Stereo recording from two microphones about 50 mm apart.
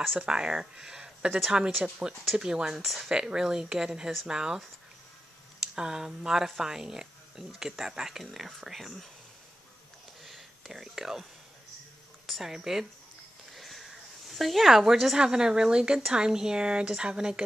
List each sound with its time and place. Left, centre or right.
0.3 s a woman's voice: centre
3.1 s a woman's voice: centre
5.8 s a woman's voice: centre
10.2 s a sound: centre
12.3 s a woman's voice: centre
13.5 s a sound: centre
15.1 s a woman's voice: centre